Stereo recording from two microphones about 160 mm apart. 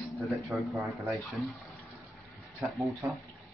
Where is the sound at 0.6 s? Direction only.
Centre (ahead or behind).